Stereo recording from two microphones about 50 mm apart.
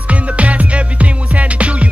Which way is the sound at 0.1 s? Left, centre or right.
Right.